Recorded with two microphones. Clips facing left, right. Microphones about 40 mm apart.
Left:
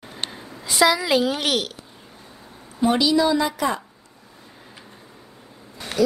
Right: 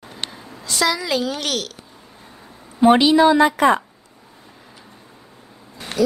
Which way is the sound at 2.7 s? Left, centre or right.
Right.